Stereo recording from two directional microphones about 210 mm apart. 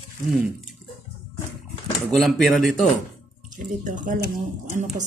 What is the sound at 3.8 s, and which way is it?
Speech, 35° right (ahead or behind).